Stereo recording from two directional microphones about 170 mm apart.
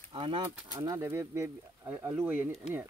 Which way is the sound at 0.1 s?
30° right (ahead or behind).